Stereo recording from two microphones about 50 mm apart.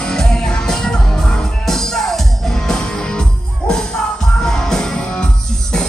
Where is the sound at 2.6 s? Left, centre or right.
Centre.